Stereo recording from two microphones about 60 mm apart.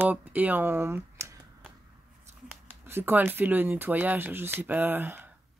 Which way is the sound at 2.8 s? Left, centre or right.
Right.